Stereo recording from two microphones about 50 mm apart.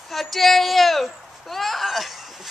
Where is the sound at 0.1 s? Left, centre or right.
Centre.